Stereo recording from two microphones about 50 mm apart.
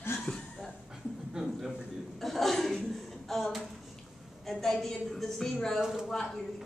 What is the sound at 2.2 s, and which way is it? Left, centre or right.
A woman's voice, centre.